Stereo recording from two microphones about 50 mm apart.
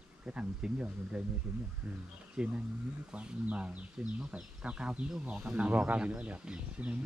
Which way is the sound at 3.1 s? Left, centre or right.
Right.